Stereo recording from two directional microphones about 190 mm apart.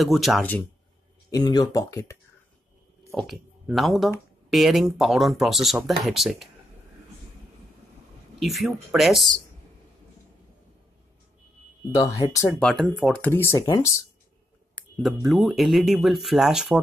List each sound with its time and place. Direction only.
0.0 s speech: centre (ahead or behind)
1.3 s speech: 20° left (ahead or behind)
3.2 s speech: centre (ahead or behind)
8.4 s speech: centre (ahead or behind)
11.9 s speech: 15° left (ahead or behind)
12.5 s speech: 5° left (ahead or behind)
14.8 s speech: centre (ahead or behind)